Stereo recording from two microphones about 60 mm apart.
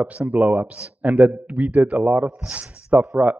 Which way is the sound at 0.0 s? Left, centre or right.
Right.